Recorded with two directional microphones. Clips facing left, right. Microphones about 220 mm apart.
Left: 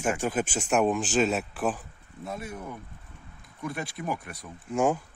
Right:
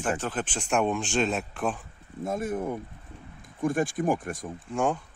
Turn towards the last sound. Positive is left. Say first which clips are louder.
# left 2 dB
turn(degrees=5)  # may be behind; listen again after turning